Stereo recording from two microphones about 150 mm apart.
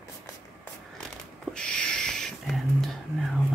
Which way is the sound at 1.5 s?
5° left (ahead or behind).